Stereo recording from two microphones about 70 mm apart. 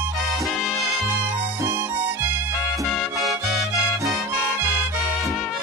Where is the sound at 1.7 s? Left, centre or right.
Right.